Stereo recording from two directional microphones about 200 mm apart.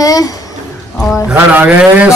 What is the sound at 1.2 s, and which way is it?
Speech, 5° right (ahead or behind).